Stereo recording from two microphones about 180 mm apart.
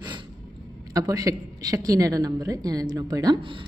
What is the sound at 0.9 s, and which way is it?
A woman's voice, 20° right (ahead or behind).